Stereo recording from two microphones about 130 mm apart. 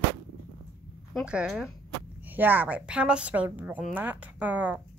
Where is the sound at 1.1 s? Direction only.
5° right (ahead or behind).